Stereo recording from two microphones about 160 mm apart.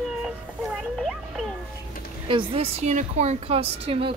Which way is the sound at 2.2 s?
35° right (ahead or behind).